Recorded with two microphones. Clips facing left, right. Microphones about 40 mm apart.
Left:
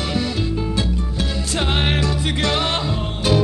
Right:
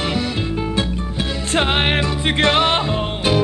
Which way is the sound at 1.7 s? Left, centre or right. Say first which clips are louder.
Right 2 dB; right.